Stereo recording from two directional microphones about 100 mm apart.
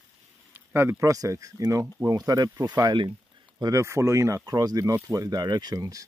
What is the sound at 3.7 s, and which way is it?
Speech, 30° right (ahead or behind).